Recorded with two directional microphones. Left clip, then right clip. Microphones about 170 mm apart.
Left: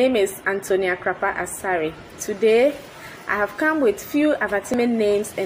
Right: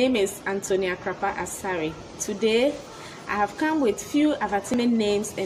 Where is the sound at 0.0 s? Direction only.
25° right (ahead or behind).